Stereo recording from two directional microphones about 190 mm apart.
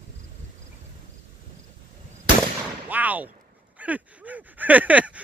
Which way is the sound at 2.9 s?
10° right (ahead or behind).